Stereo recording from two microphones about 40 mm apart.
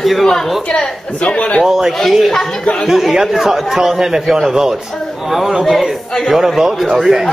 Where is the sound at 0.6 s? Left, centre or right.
Left.